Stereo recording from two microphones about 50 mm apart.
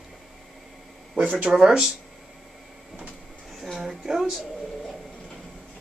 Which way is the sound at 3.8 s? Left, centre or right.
Centre.